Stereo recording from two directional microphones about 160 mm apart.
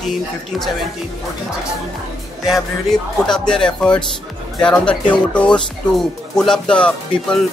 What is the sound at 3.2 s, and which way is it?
Speech, 5° left (ahead or behind).